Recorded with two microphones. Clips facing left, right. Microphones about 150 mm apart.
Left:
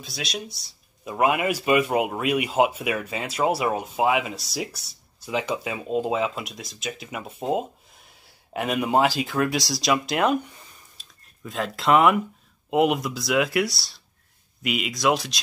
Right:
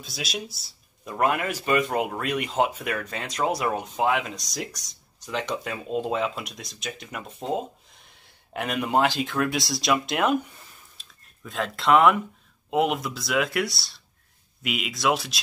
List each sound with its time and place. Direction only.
0.0 s speech: centre (ahead or behind)
11.0 s a sound: centre (ahead or behind)
12.6 s speech: centre (ahead or behind)